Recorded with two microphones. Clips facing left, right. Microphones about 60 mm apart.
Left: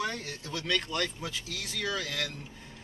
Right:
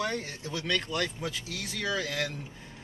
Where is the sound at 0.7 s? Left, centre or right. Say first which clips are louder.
Even; centre.